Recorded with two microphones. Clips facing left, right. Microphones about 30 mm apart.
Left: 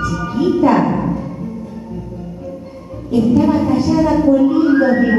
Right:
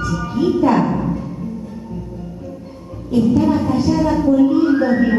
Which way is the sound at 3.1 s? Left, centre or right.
Centre.